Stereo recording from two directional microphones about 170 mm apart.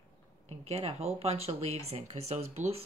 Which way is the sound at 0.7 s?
40° right (ahead or behind).